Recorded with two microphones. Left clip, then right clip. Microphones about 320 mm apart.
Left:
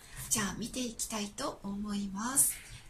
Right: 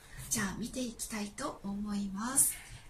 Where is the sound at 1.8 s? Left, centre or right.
Centre.